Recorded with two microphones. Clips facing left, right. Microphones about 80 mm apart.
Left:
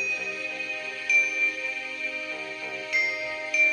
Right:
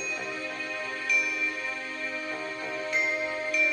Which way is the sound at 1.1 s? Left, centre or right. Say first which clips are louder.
Left 4 dB; right.